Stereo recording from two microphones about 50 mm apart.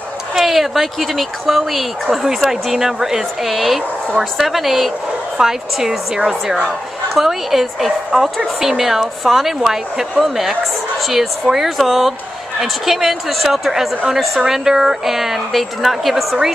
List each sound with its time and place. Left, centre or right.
0.3 s speech: centre